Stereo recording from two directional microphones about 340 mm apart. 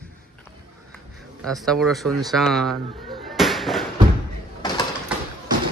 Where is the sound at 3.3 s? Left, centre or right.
Centre.